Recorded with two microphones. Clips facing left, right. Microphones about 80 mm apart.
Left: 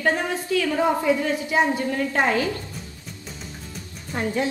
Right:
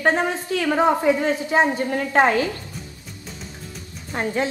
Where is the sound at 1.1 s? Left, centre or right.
Right.